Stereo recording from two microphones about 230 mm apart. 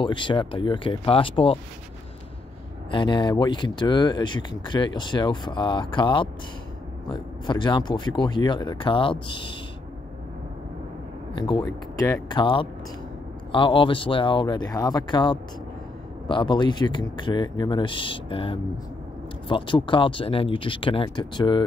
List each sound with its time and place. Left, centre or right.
0.0 s speech: left
2.9 s speech: left
11.3 s speech: centre